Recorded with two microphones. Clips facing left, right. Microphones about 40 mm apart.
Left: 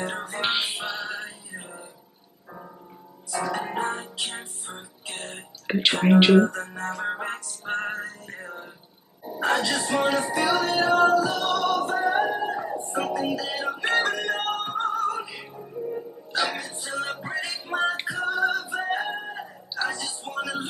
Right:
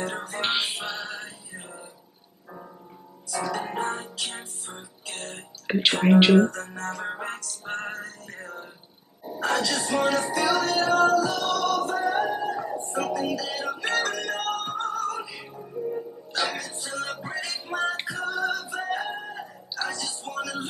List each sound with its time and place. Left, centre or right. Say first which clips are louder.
0.0 s music: left 1 dB; left
0.3 s music: left 1 dB; centre
3.6 s music: left 1 dB; centre
5.7 s speech: even; centre
6.5 s music: left 2 dB; left
9.4 s music: left 2 dB; left
9.8 s speech: left 1 dB; centre
10.3 s music: left 1 dB; left
15.6 s music: right 1 dB; centre
16.5 s music: left 1 dB; centre